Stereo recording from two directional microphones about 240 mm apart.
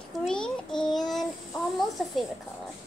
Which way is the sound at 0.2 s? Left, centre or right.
Centre.